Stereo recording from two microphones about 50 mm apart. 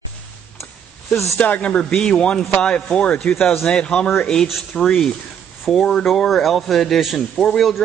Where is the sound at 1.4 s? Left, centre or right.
Left.